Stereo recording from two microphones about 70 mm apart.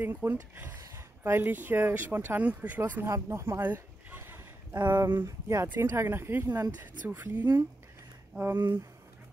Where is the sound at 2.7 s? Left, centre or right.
Right.